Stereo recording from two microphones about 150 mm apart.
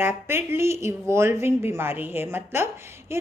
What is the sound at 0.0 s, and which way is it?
Speech, 15° right (ahead or behind).